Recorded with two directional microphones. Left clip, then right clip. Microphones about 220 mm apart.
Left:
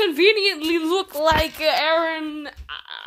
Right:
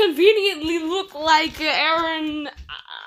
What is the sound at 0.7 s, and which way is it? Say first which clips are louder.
A woman's voice: left 2 dB; 25° left (ahead or behind).